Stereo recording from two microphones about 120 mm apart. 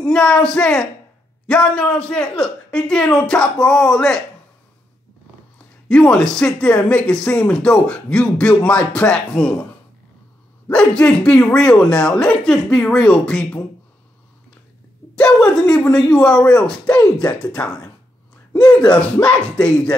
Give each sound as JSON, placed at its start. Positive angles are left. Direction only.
{"t": 0.0, "sound": "speech", "side_deg": 5}
{"t": 5.9, "sound": "speech", "side_deg": 5}
{"t": 10.7, "sound": "speech", "side_deg": 10}
{"t": 15.1, "sound": "speech", "side_deg": 5}